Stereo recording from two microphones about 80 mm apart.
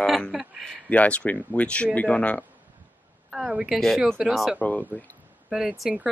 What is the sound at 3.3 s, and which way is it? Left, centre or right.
Speech, centre.